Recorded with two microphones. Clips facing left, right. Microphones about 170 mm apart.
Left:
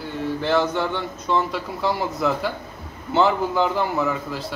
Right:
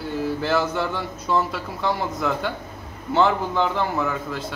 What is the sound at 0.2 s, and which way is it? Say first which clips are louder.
Speech: left 2 dB; 5° right (ahead or behind).